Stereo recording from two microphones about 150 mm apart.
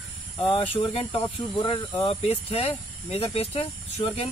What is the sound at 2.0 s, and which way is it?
Speech, 45° left (ahead or behind).